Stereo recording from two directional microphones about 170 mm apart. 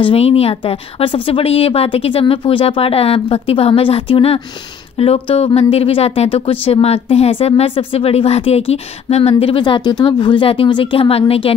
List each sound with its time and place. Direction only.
0.0 s a woman's voice: 35° left (ahead or behind)